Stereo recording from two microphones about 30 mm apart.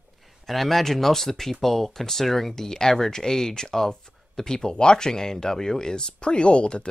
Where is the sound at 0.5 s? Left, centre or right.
Centre.